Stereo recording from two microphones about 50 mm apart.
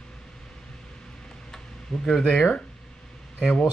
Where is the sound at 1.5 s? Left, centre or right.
Centre.